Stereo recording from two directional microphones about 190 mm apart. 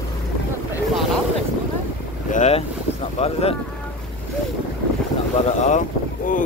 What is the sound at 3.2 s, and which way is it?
Speech, 30° left (ahead or behind).